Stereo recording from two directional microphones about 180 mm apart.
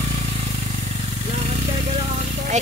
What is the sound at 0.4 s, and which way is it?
Vehicle, 40° right (ahead or behind).